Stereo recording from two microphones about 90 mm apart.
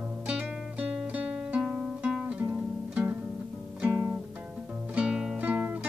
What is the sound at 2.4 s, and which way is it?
Music, 20° right (ahead or behind).